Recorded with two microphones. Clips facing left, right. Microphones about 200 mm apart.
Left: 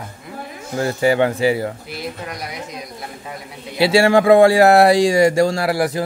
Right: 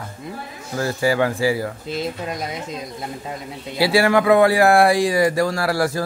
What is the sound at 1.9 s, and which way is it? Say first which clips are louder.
Speech: right 3 dB; 25° right (ahead or behind).